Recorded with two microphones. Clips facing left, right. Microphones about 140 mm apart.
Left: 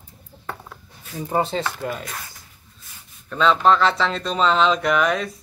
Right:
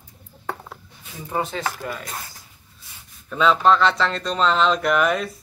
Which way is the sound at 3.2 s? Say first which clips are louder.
Even; 5° right (ahead or behind).